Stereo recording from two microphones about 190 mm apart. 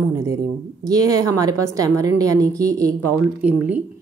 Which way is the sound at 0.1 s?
15° right (ahead or behind).